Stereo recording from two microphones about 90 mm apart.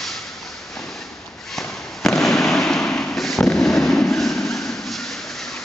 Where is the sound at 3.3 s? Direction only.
5° left (ahead or behind).